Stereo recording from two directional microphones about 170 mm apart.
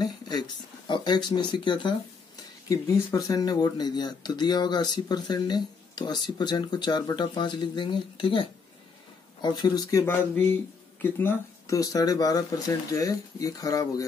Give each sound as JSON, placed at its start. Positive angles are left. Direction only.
{"t": 0.0, "sound": "speech", "side_deg": 25}